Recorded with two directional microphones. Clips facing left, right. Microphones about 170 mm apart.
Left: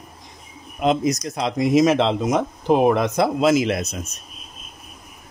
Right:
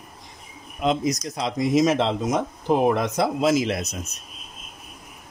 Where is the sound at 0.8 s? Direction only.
55° left (ahead or behind).